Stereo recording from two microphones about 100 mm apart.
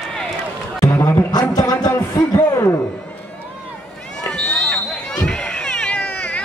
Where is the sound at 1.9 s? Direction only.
25° left (ahead or behind).